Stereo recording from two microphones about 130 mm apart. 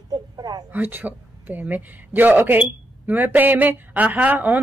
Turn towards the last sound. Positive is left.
turn(degrees=-10)  # may be behind; listen again after turning